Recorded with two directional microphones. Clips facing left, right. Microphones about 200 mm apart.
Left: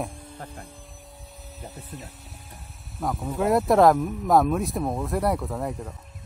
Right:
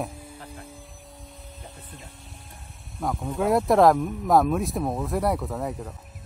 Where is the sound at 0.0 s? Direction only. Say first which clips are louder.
Even; 5° right (ahead or behind).